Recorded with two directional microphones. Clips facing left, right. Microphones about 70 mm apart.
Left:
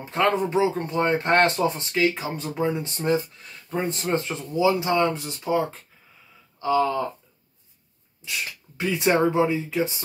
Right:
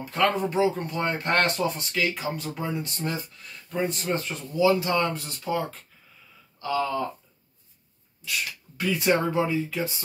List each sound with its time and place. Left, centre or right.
0.0 s speech: left
8.3 s speech: left